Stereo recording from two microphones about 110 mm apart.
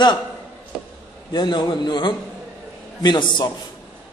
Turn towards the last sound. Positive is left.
turn(degrees=45)  # may be behind; listen again after turning